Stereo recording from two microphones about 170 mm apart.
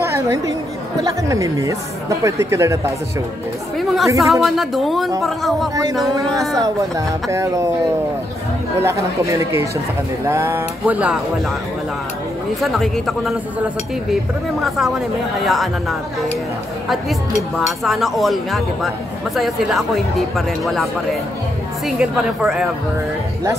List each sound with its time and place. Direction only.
0.0 s a woman's voice: 15° right (ahead or behind)
3.7 s speech: centre (ahead or behind)
6.6 s speech: 20° right (ahead or behind)
8.7 s speech: 15° right (ahead or behind)
12.6 s speech: centre (ahead or behind)
14.6 s speech: centre (ahead or behind)
17.6 s speech: centre (ahead or behind)